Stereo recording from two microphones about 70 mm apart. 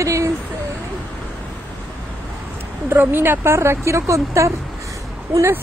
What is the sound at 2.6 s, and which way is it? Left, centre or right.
Speech, right.